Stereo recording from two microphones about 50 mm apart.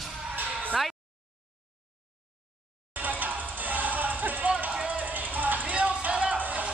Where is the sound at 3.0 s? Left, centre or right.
Right.